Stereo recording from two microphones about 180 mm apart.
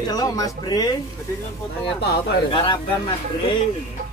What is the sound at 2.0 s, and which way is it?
Speech, 65° left (ahead or behind).